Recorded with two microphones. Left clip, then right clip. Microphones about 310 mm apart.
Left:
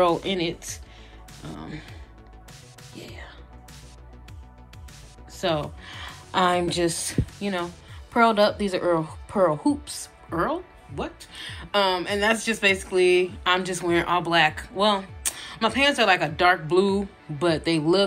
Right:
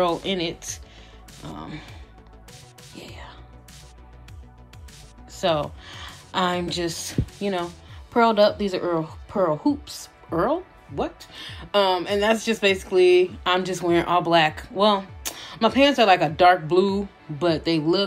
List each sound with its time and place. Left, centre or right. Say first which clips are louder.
0.0 s speech: left 1 dB; centre
3.0 s music: right 1 dB; centre
5.4 s speech: right 3 dB; centre